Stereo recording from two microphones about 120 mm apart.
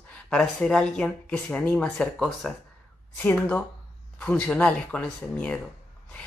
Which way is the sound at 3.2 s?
15° left (ahead or behind).